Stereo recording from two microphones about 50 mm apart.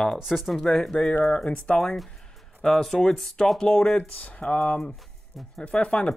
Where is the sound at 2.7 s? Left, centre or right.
Centre.